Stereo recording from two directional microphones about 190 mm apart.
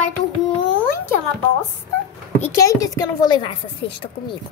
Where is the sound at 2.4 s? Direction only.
15° left (ahead or behind).